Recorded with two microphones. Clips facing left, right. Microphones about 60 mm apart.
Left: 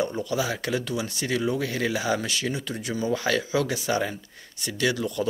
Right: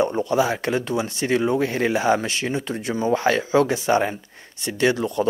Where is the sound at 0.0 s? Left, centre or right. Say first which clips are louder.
Right 7 dB; right.